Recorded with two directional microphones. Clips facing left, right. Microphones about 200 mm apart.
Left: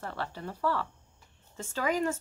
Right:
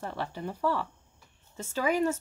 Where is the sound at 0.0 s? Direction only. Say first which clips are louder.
Right 2 dB; 15° right (ahead or behind).